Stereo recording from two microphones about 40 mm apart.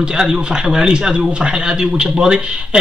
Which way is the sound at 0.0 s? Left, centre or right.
Centre.